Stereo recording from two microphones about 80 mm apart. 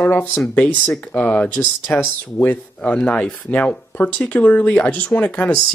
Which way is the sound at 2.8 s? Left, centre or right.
Centre.